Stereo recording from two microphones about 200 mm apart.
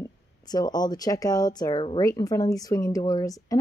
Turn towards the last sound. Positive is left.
turn(degrees=15)  # may be behind; listen again after turning